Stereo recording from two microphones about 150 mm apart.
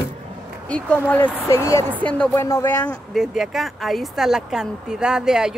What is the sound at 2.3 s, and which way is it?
Speech, 15° left (ahead or behind).